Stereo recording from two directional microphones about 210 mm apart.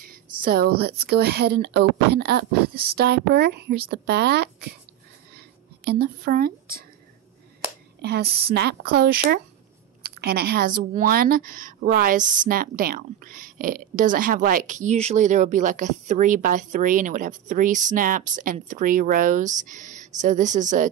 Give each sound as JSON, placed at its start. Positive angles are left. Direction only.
{"t": 0.4, "sound": "speech", "side_deg": -45}
{"t": 5.9, "sound": "speech", "side_deg": -45}
{"t": 8.0, "sound": "a woman's voice", "side_deg": -50}